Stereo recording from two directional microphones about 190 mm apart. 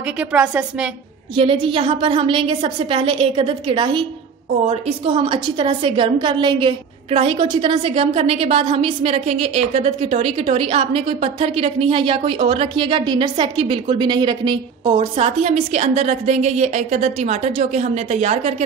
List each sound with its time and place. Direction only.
0.2 s a woman's voice: 5° right (ahead or behind)
1.3 s a woman's voice: 30° right (ahead or behind)
14.9 s a woman's voice: 35° right (ahead or behind)